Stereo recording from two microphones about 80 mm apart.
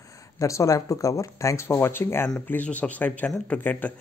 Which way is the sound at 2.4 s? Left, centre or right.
Centre.